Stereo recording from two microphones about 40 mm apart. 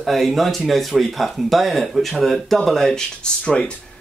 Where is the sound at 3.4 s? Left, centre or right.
Left.